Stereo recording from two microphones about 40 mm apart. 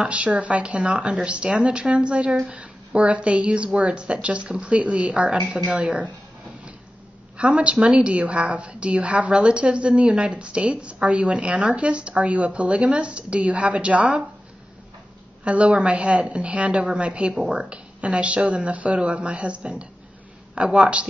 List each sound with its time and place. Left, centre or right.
0.0 s a woman's voice: right
7.3 s a woman's voice: right
15.4 s a woman's voice: right